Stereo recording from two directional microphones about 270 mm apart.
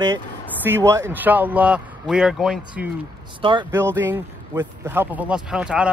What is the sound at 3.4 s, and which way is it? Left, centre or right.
Speech, centre.